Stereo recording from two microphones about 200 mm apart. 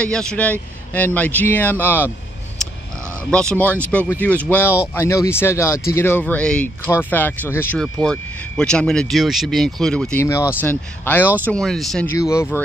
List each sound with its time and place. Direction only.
0.0 s speech: 5° left (ahead or behind)
3.3 s speech: 5° left (ahead or behind)
12.2 s speech: 15° left (ahead or behind)